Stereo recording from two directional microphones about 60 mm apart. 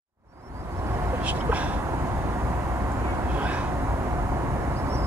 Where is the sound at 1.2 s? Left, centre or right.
Right.